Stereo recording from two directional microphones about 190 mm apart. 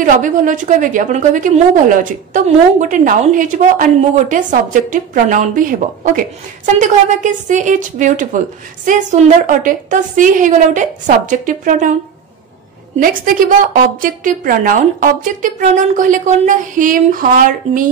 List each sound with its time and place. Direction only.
0.0 s a woman's voice: 45° right (ahead or behind)
13.0 s a woman's voice: 45° right (ahead or behind)